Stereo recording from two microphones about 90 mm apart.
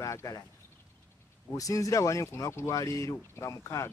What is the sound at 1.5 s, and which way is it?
Speech, 40° left (ahead or behind).